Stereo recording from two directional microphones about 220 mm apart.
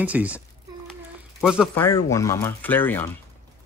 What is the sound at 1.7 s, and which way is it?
Speech, 15° left (ahead or behind).